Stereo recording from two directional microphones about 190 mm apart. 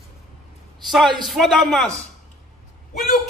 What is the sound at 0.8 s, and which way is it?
A man's voice, centre (ahead or behind).